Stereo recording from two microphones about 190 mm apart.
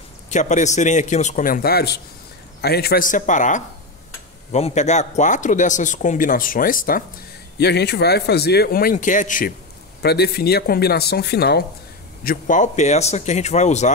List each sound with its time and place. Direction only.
0.3 s a man's voice: 40° left (ahead or behind)
7.5 s speech: 60° left (ahead or behind); by 9.5 s 45° left (ahead or behind)
10.0 s speech: 55° left (ahead or behind)
12.2 s speech: 45° left (ahead or behind)